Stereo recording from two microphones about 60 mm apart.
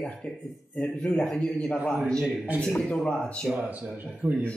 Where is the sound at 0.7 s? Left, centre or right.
Centre.